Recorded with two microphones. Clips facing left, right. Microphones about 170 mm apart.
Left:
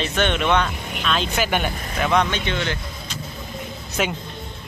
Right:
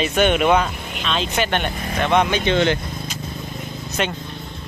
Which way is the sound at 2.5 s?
25° right (ahead or behind).